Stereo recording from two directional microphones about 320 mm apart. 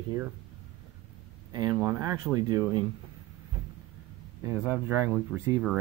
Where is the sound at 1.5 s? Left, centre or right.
Centre.